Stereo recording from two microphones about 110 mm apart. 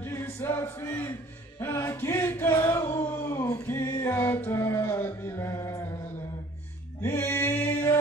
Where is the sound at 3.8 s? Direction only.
20° left (ahead or behind).